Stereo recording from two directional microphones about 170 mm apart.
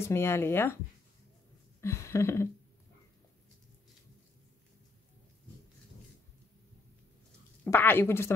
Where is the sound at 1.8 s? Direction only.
15° left (ahead or behind).